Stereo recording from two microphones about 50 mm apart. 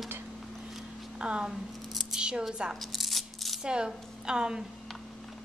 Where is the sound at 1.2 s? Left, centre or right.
Centre.